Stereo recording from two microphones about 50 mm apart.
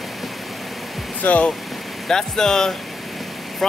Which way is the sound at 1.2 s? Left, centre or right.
Left.